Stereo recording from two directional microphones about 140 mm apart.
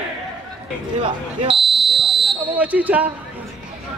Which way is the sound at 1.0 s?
40° right (ahead or behind).